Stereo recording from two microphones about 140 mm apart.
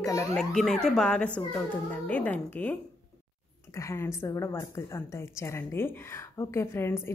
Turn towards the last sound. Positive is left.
turn(degrees=15)  # may be behind; listen again after turning